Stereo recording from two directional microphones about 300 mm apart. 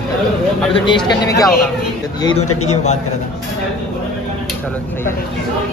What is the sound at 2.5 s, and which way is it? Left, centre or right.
Speech, left.